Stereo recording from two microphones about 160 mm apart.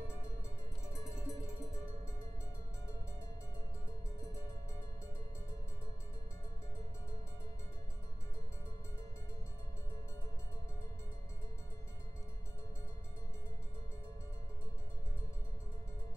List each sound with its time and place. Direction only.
0.9 s music: 20° left (ahead or behind)